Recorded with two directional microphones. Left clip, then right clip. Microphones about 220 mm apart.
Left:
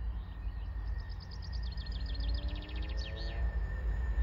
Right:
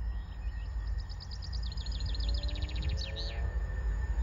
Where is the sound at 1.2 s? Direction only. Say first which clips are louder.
Right 6 dB; 45° right (ahead or behind).